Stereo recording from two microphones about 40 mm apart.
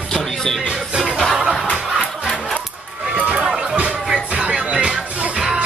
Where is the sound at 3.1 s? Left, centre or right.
Right.